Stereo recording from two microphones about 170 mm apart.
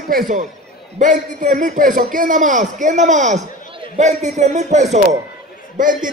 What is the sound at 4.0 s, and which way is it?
A man's voice, 45° right (ahead or behind).